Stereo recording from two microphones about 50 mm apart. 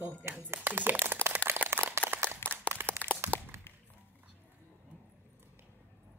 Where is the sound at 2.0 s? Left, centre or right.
Right.